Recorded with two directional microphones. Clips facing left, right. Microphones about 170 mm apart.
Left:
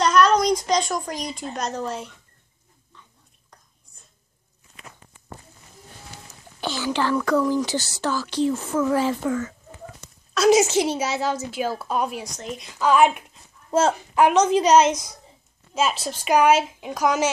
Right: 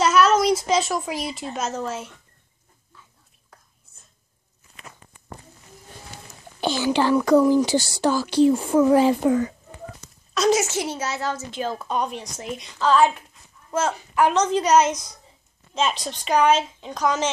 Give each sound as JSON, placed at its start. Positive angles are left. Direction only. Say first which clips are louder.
{"t": 0.0, "sound": "a woman's voice", "louder": "even", "side_deg": -5}
{"t": 2.9, "sound": "chewing", "louder": "left 1 dB", "side_deg": -5}
{"t": 6.6, "sound": "speech", "louder": "right 4 dB", "side_deg": -15}
{"t": 10.5, "sound": "a woman's voice", "louder": "left 4 dB", "side_deg": 15}
{"t": 14.2, "sound": "a woman's voice", "louder": "left 3 dB", "side_deg": 10}